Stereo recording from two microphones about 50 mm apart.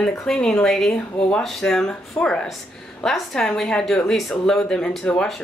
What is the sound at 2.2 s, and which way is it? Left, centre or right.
Speech, left.